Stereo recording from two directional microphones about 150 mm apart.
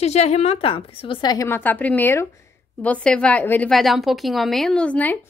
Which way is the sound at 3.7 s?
Centre (ahead or behind).